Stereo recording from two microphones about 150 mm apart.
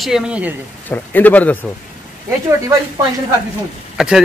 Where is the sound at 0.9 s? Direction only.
10° left (ahead or behind).